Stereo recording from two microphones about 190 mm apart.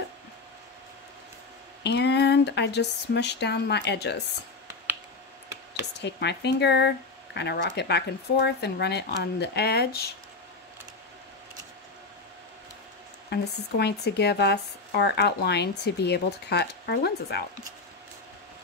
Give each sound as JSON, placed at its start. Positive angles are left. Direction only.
{"t": 1.8, "sound": "speech", "side_deg": 65}
{"t": 5.9, "sound": "speech", "side_deg": 60}
{"t": 13.3, "sound": "speech", "side_deg": 60}